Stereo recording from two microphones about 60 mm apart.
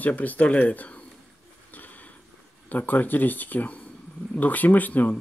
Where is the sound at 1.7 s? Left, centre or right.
Left.